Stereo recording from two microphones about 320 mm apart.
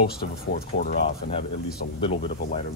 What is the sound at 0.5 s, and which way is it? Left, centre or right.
Speech, left.